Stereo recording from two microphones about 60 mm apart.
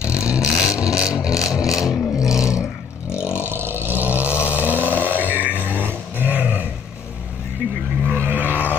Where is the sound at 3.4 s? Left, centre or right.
Right.